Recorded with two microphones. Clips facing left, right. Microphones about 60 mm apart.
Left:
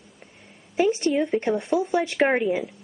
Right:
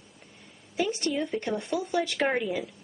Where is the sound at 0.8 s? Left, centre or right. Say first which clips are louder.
Left 7 dB; left.